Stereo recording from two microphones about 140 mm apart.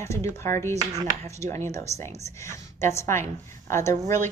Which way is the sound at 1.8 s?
55° right (ahead or behind).